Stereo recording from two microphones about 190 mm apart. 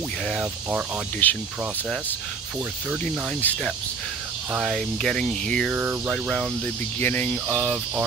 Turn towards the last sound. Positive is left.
turn(degrees=0)  # may be behind; listen again after turning